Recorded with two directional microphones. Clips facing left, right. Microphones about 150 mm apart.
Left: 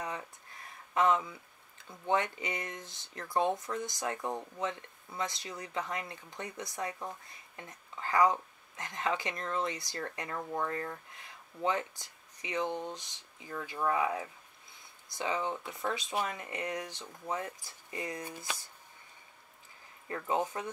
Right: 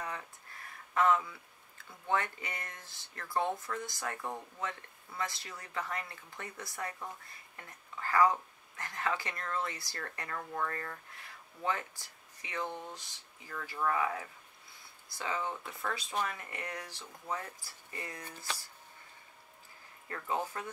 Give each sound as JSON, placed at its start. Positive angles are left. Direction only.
{"t": 0.0, "sound": "a sound", "side_deg": 20}
{"t": 1.9, "sound": "speech", "side_deg": 20}
{"t": 20.1, "sound": "speech", "side_deg": 20}